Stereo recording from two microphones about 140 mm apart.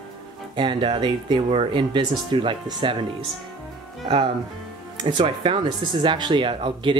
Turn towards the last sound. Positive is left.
turn(degrees=-35)  # may be behind; listen again after turning